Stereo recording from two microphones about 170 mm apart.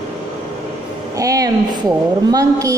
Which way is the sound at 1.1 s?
20° right (ahead or behind).